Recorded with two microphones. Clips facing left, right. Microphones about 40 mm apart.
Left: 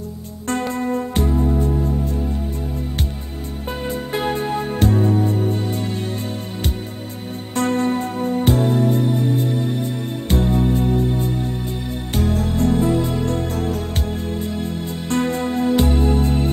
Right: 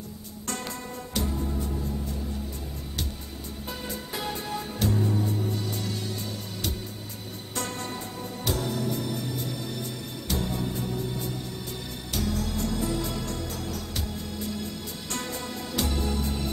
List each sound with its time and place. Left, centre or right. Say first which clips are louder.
0.5 s music: left 13 dB; left
3.8 s music: left 12 dB; left
7.5 s music: left 14 dB; left